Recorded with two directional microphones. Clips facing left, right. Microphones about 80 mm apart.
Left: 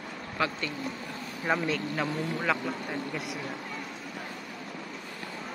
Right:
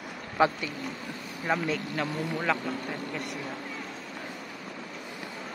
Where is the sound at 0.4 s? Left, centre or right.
Right.